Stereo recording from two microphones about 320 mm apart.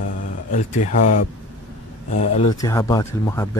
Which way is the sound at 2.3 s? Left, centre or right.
Centre.